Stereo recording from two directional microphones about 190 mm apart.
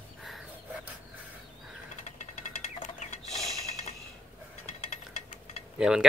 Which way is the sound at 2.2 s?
40° left (ahead or behind).